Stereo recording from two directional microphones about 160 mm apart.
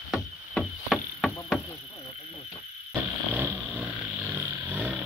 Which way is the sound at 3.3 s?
10° right (ahead or behind).